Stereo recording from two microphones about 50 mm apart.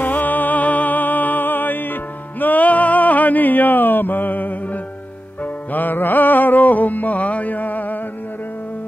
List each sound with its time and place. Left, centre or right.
0.0 s music: left